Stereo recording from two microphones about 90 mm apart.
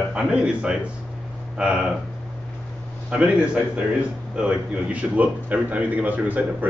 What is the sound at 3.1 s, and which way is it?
Speech, 10° right (ahead or behind).